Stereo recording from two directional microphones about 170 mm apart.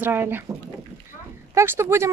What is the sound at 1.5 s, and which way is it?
Speech, 15° right (ahead or behind).